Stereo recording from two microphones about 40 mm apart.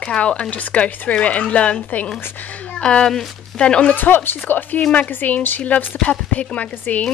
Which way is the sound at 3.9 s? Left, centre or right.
Left.